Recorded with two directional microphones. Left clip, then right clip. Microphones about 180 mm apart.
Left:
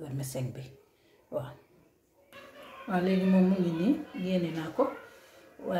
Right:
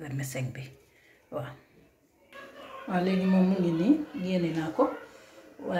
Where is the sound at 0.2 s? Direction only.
20° left (ahead or behind).